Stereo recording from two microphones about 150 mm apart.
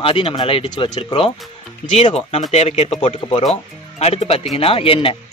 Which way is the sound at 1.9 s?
45° left (ahead or behind).